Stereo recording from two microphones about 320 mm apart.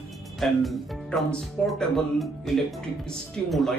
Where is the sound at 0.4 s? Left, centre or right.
Centre.